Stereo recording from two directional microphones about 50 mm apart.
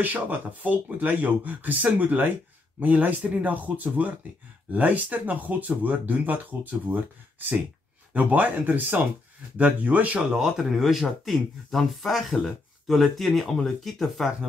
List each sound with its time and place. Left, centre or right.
0.0 s speech: right
10.3 s speech: centre